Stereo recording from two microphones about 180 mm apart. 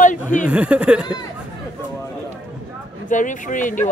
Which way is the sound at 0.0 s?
45° left (ahead or behind).